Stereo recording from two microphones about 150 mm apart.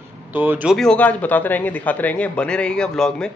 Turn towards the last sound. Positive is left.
turn(degrees=5)  # may be behind; listen again after turning